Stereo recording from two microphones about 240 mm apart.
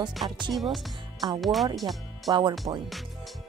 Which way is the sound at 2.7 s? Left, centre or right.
Right.